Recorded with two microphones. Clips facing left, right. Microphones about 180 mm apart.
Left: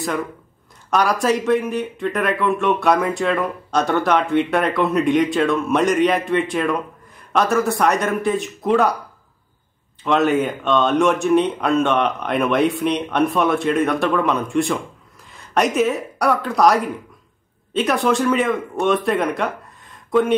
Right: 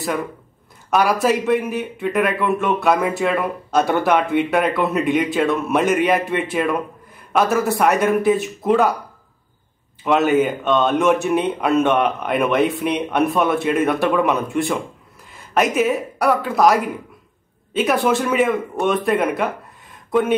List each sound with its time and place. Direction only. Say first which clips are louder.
0.8 s speech: right 1 dB; 5° right (ahead or behind)
10.0 s speech: right 1 dB; 5° right (ahead or behind)